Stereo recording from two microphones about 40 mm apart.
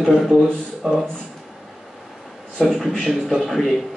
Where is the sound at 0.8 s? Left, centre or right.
Right.